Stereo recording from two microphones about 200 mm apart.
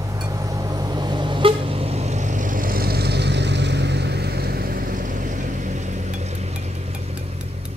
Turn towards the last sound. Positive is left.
turn(degrees=-30)  # may be behind; listen again after turning